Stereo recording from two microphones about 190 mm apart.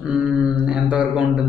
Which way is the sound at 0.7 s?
5° right (ahead or behind).